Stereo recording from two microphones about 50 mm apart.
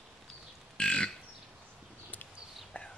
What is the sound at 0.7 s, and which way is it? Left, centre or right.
Burping, centre.